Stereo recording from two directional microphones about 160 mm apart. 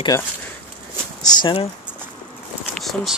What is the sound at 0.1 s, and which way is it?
Speech, 15° left (ahead or behind).